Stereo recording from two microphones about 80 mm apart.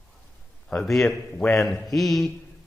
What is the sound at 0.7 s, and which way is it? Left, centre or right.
A man's voice, centre.